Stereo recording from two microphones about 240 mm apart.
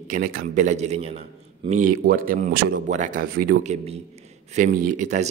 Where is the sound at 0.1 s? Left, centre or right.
Right.